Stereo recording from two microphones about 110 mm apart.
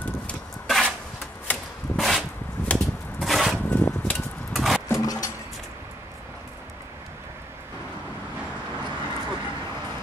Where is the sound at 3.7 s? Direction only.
15° left (ahead or behind).